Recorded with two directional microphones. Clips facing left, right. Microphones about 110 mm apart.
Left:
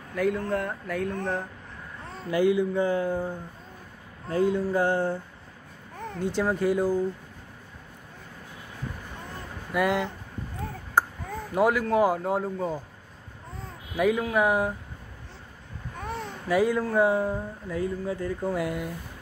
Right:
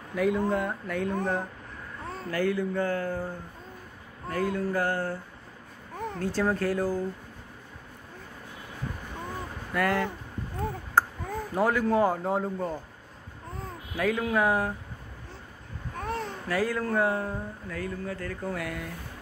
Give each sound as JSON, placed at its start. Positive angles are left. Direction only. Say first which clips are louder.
{"t": 0.1, "sound": "a man's voice", "louder": "right 1 dB", "side_deg": 0}
{"t": 2.3, "sound": "speech", "louder": "left 5 dB", "side_deg": 15}
{"t": 9.7, "sound": "speech", "louder": "left 2 dB", "side_deg": 15}
{"t": 11.0, "sound": "a sound", "louder": "even", "side_deg": 15}
{"t": 11.5, "sound": "a man's voice", "louder": "left 2 dB", "side_deg": 10}
{"t": 13.9, "sound": "speech", "louder": "left 3 dB", "side_deg": 15}
{"t": 16.0, "sound": "babbling", "louder": "right 2 dB", "side_deg": 0}
{"t": 16.4, "sound": "speech", "louder": "left 5 dB", "side_deg": 15}